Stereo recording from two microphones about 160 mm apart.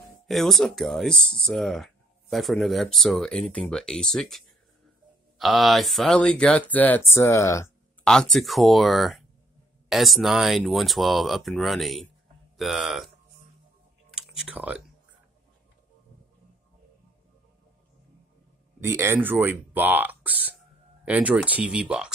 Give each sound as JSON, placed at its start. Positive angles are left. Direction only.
{"t": 0.3, "sound": "speech", "side_deg": 0}
{"t": 8.0, "sound": "speech", "side_deg": 5}
{"t": 14.1, "sound": "speech", "side_deg": -5}
{"t": 18.8, "sound": "speech", "side_deg": -15}